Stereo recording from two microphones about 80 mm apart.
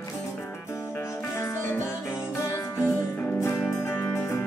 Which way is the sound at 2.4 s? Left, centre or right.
Left.